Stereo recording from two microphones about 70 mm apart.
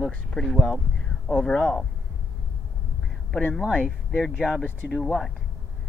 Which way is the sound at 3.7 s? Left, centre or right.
Left.